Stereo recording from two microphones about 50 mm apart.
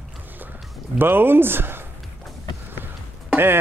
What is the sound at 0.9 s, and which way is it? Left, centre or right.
Speech, right.